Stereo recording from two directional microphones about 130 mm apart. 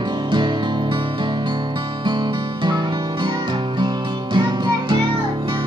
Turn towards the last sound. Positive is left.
turn(degrees=-40)  # may be behind; listen again after turning